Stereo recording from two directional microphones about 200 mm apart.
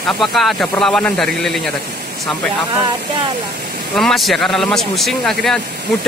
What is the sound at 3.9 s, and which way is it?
Speech, centre (ahead or behind).